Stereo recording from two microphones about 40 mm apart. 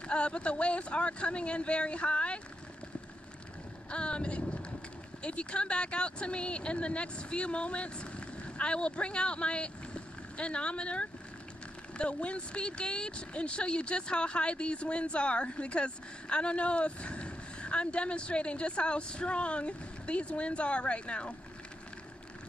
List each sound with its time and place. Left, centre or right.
0.0 s speech: left
3.9 s speech: left